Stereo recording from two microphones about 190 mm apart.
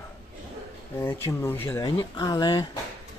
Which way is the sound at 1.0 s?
15° left (ahead or behind).